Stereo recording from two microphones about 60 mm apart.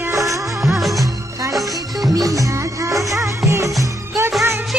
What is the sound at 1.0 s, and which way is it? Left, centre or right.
Music, right.